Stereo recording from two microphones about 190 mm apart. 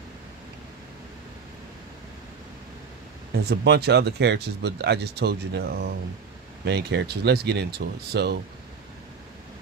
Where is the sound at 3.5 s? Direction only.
60° right (ahead or behind).